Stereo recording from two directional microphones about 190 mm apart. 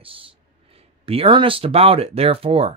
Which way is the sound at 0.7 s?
30° right (ahead or behind).